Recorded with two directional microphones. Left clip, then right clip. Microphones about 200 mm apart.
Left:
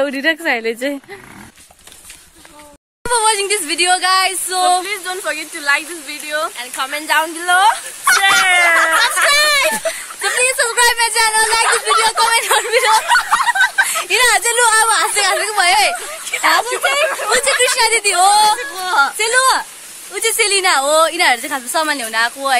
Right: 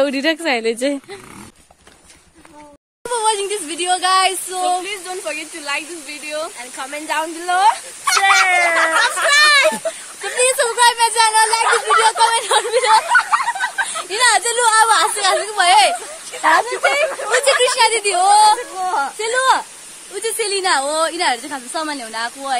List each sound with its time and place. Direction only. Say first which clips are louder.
0.0 s a woman's voice: left 1 dB; 20° right (ahead or behind)
3.0 s speech: left 3 dB; 10° left (ahead or behind)
9.3 s a sound: right 5 dB; 20° right (ahead or behind)
9.7 s speech: left 1 dB; 10° left (ahead or behind)
14.0 s speech: right 1 dB; 15° left (ahead or behind)
16.3 s a woman's voice: even; 25° right (ahead or behind)
17.6 s speech: left 1 dB; 10° left (ahead or behind)
18.6 s speech: left 4 dB; 35° right (ahead or behind)
19.1 s a woman's voice: left 2 dB; 10° left (ahead or behind)